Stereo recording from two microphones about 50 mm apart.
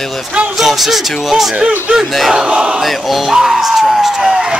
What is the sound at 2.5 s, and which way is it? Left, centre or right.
Speech, centre.